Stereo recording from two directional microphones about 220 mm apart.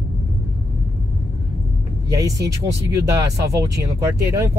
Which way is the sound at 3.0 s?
15° right (ahead or behind).